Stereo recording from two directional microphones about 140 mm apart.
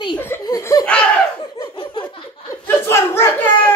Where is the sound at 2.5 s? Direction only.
20° left (ahead or behind).